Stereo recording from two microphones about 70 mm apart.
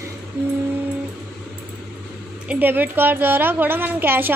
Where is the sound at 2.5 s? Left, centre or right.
Right.